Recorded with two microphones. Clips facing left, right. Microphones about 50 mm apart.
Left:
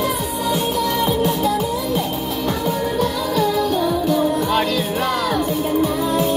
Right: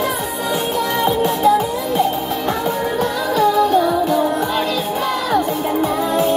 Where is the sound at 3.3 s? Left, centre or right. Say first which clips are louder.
Right 6 dB; right.